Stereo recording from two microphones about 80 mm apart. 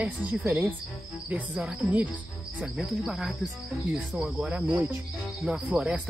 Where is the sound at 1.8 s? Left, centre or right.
Right.